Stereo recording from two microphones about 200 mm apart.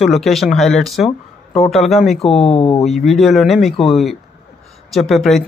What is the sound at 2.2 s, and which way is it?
Speech, 30° left (ahead or behind).